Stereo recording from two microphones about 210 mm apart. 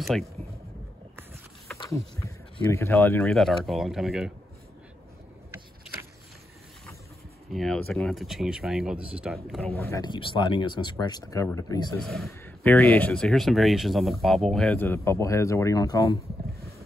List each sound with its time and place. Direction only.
0.0 s speech: centre (ahead or behind)
1.7 s a sound: 5° left (ahead or behind)
2.1 s speech: 15° left (ahead or behind)
7.5 s speech: centre (ahead or behind)
9.8 s speech: 15° left (ahead or behind)
12.0 s speech: centre (ahead or behind); by 16.2 s 15° left (ahead or behind)